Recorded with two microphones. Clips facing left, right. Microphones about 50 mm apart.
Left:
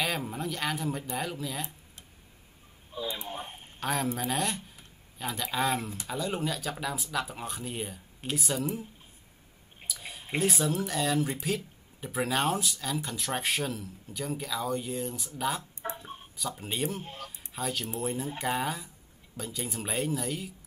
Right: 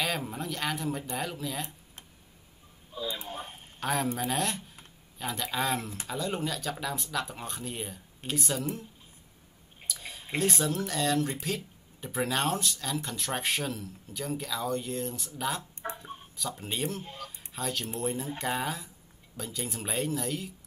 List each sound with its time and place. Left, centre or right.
0.0 s speech: centre
2.9 s speech: left
3.8 s speech: centre
9.8 s speech: centre
17.0 s speech: centre
17.6 s speech: centre